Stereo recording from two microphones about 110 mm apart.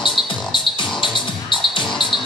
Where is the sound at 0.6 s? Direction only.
45° left (ahead or behind).